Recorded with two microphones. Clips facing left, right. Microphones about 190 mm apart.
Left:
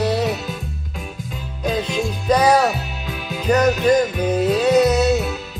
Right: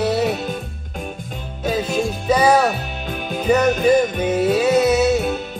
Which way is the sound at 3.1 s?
50° right (ahead or behind).